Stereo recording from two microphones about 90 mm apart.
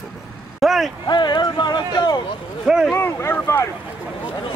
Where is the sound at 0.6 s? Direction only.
Centre (ahead or behind).